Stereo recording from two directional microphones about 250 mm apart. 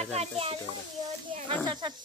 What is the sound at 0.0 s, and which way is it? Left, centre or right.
Speech, right.